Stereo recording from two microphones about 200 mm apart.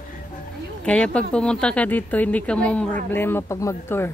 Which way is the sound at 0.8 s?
5° left (ahead or behind).